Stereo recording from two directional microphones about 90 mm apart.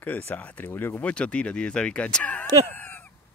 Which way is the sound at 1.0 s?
15° left (ahead or behind).